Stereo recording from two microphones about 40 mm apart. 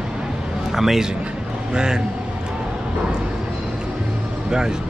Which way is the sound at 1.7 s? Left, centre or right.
Centre.